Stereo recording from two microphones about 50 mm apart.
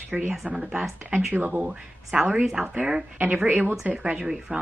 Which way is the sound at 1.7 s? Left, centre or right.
Centre.